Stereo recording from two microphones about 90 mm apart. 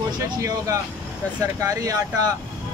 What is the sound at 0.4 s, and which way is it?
Speech, 40° right (ahead or behind).